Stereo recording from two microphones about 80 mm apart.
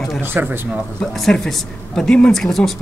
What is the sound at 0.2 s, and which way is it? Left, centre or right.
Speech, right.